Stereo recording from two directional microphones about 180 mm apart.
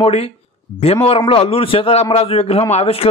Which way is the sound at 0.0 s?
35° left (ahead or behind).